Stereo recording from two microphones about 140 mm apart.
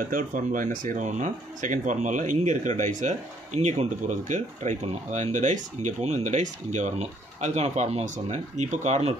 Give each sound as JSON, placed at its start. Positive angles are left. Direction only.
{"t": 0.1, "sound": "speech", "side_deg": -70}